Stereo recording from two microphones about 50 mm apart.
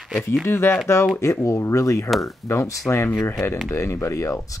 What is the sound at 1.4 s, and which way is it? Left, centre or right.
Speech, left.